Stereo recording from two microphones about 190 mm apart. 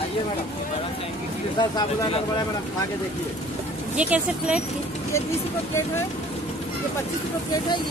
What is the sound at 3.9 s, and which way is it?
Speech, 5° right (ahead or behind).